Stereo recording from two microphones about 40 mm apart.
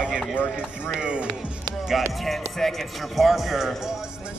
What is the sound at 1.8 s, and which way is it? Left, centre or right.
Speech, centre.